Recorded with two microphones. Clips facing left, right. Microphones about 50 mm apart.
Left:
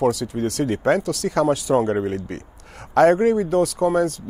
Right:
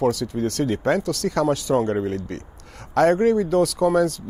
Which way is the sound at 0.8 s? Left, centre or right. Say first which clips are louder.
Left 2 dB; left.